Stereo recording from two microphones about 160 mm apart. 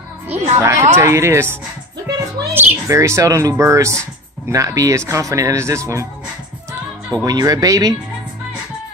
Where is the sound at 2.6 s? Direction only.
15° right (ahead or behind).